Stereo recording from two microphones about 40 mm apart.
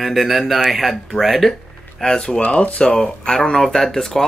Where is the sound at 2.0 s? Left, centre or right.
Centre.